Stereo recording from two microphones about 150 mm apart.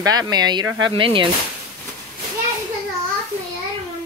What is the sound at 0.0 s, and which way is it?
Speech, 25° right (ahead or behind).